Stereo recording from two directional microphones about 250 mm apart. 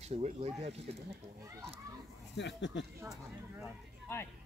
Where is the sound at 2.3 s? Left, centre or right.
Left.